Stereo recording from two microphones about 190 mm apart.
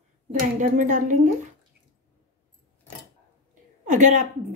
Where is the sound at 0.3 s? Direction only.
40° right (ahead or behind).